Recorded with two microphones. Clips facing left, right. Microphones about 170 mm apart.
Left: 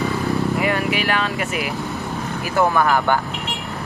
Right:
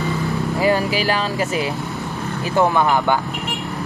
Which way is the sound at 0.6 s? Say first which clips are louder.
Right 3 dB; 35° right (ahead or behind).